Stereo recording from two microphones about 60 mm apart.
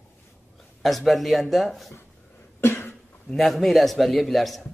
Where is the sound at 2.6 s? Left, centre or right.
Left.